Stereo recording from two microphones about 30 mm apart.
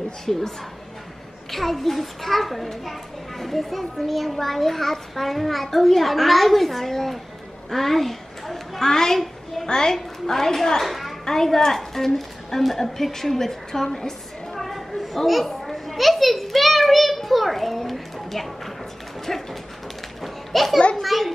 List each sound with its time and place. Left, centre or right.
0.3 s a child's voice: centre
1.5 s a child's voice: centre
7.7 s a sound: centre
8.8 s a woman's voice: centre
10.9 s a sound: centre
11.2 s a woman's voice: centre
14.5 s children playing: centre
20.5 s a child's voice: centre